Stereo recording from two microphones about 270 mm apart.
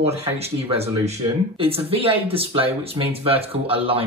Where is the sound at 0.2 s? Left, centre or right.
Right.